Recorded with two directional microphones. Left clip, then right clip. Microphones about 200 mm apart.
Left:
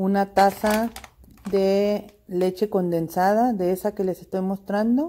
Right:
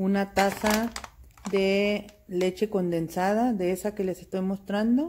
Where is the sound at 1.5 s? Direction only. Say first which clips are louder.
Left 4 dB; 15° left (ahead or behind).